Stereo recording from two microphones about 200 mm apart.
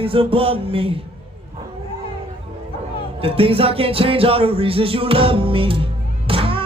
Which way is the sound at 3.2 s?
30° right (ahead or behind).